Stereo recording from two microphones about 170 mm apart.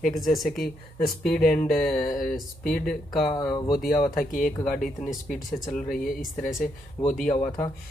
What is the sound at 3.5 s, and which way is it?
Speech, 25° left (ahead or behind).